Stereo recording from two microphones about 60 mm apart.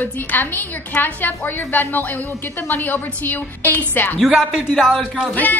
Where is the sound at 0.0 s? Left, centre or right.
Left.